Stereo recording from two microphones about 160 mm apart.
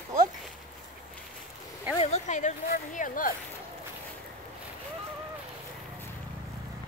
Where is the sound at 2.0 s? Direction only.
45° left (ahead or behind).